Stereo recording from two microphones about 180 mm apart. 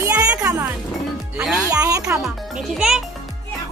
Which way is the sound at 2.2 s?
Centre (ahead or behind).